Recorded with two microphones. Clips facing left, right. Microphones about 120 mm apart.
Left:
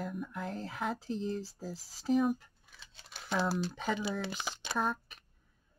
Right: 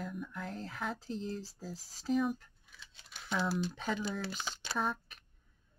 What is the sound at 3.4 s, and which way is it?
Speech, 35° left (ahead or behind).